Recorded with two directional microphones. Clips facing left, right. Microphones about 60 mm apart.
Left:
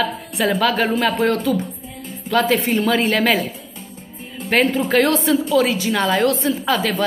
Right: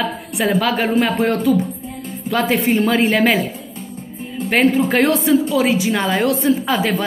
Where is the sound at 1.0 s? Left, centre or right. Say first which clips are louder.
Right 1 dB; centre.